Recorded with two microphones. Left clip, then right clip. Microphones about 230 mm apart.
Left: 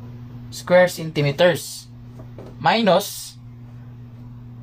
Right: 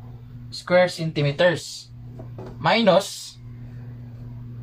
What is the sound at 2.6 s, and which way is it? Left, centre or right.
Speech, left.